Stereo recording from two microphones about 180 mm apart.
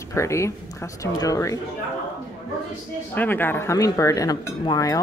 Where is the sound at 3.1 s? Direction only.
10° left (ahead or behind).